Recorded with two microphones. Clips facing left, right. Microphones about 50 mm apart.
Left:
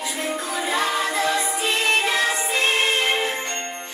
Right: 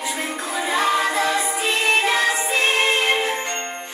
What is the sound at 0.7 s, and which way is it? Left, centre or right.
Music, centre.